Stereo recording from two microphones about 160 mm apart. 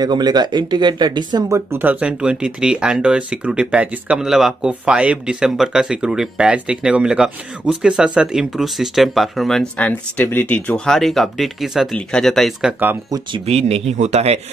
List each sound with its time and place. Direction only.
0.0 s speech: 25° right (ahead or behind)
1.7 s speech: 10° right (ahead or behind)
13.5 s speech: 40° right (ahead or behind)